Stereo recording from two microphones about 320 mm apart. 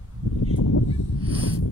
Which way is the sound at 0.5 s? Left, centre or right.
Left.